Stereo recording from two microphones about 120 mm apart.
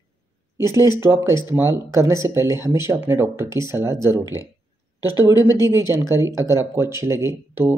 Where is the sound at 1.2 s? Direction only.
30° left (ahead or behind).